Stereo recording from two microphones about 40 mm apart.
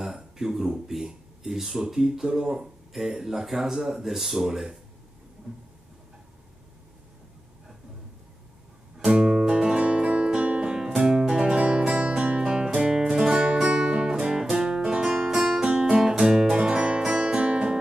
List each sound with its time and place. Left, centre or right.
0.0 s speech: centre
5.5 s vehicle: centre
9.1 s music: centre
14.8 s music: right